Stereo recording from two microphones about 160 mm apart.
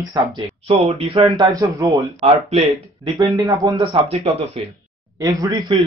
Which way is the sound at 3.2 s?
20° right (ahead or behind).